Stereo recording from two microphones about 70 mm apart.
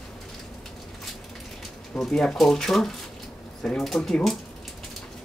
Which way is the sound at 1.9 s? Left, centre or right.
Centre.